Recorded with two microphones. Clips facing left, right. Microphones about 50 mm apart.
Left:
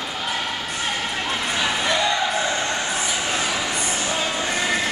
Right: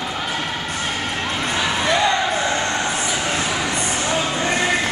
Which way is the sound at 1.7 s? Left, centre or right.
Right.